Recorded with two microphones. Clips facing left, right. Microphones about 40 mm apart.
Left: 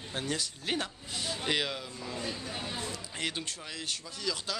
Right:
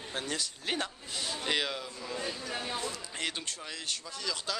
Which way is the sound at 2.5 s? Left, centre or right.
Centre.